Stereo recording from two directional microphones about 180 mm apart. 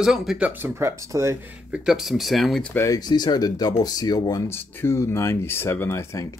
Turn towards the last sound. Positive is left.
turn(degrees=15)  # may be behind; listen again after turning